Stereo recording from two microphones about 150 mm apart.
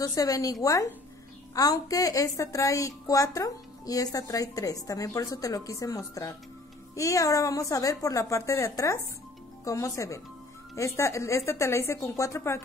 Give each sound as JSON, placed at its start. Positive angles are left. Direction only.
{"t": 0.0, "sound": "a woman's voice", "side_deg": 25}